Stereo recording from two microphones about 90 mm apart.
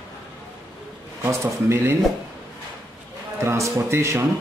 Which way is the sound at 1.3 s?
30° right (ahead or behind).